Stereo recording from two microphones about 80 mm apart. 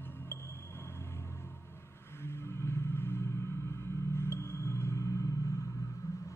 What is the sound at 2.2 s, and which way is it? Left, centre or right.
Rumble, left.